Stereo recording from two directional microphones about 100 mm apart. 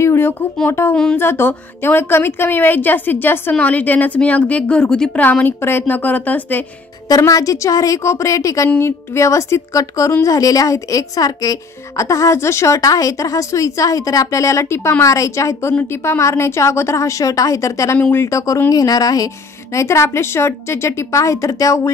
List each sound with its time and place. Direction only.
0.0 s a sound: 25° left (ahead or behind)
0.7 s a woman's voice: 25° left (ahead or behind); by 5.2 s 10° left (ahead or behind)
5.2 s a woman's voice: 20° left (ahead or behind)
7.1 s a woman's voice: 35° left (ahead or behind)
17.9 s a woman's voice: 15° left (ahead or behind)
18.2 s a woman's voice: 30° left (ahead or behind)